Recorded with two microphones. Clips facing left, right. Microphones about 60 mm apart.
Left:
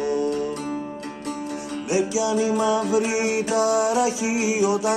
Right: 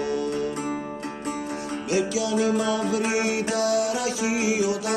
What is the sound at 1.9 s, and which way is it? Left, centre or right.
Music, centre.